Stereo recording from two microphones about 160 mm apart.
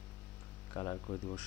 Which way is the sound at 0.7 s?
20° left (ahead or behind).